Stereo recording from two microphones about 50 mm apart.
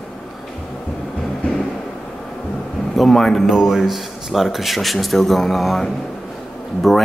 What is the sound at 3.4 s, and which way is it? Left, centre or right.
Speech, centre.